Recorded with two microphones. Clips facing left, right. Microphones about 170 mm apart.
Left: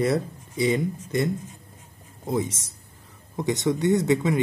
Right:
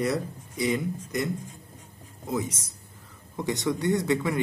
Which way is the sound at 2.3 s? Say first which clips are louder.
Left 3 dB; 30° left (ahead or behind).